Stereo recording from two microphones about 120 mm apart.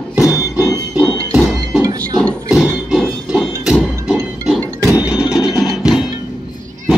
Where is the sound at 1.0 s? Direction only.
10° right (ahead or behind).